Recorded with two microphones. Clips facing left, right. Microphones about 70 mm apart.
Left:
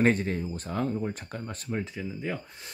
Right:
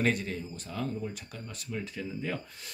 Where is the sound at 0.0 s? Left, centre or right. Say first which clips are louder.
Left 5 dB; left.